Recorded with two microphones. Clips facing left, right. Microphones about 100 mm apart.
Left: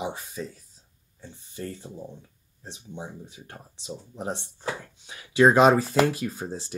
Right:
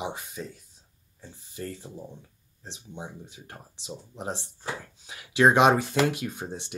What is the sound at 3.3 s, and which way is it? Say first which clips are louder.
Speech: left 1 dB; centre (ahead or behind).